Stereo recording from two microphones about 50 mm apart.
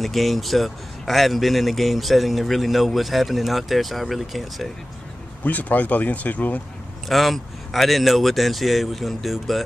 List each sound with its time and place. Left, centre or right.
0.0 s speech: centre
5.4 s speech: left
7.1 s speech: centre